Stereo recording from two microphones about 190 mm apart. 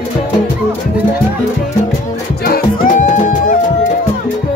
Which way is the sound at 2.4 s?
45° left (ahead or behind).